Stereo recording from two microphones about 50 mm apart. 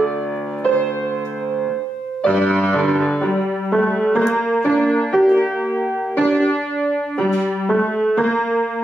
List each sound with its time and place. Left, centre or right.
2.2 s keyboard: left
2.8 s music: centre
4.6 s keyboard: left
5.1 s music: centre
6.1 s music: left